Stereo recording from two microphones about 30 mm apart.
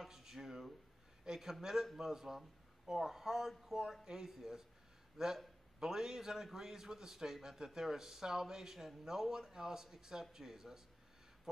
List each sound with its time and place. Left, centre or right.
0.1 s speech: centre